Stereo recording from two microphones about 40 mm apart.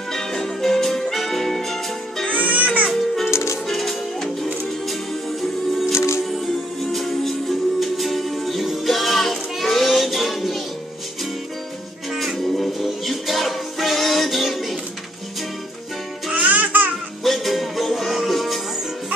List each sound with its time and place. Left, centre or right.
0.1 s music: centre
2.3 s music: right
2.9 s music: centre
6.3 s music: centre
12.1 s music: centre
16.4 s music: right
17.2 s music: centre